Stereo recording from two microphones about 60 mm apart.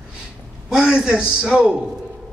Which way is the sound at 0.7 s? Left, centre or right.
Centre.